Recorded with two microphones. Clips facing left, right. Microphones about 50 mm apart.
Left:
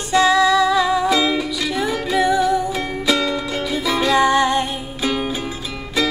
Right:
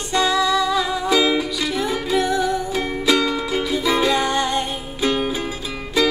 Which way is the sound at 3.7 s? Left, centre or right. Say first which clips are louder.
Left 1 dB; centre.